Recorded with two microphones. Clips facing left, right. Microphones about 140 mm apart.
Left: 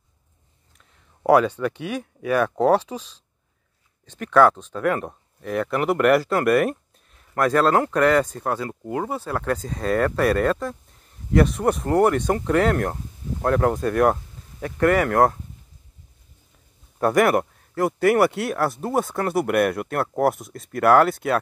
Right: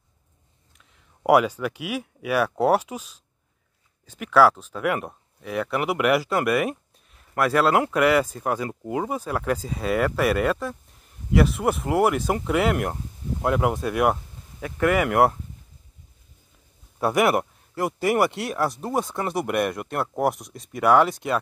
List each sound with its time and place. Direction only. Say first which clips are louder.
1.2 s speech: left 2 dB; 10° right (ahead or behind)
17.0 s speech: left 2 dB; 5° right (ahead or behind)